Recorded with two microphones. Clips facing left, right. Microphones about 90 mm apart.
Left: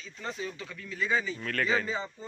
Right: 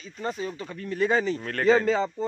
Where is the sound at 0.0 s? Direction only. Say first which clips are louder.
Right 6 dB; 40° right (ahead or behind); by 1.4 s 60° right (ahead or behind).